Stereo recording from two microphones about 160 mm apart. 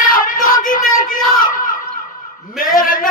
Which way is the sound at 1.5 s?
60° left (ahead or behind).